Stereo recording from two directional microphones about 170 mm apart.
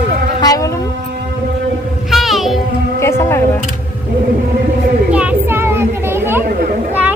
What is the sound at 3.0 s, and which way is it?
Music, 15° left (ahead or behind).